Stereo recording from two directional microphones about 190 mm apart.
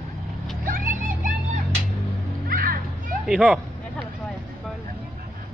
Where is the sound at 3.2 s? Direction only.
Centre (ahead or behind).